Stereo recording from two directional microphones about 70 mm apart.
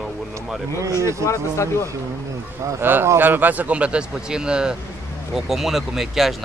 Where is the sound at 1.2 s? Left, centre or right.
Left.